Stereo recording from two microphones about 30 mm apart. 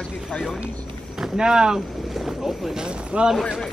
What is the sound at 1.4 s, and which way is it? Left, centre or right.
Speech, right.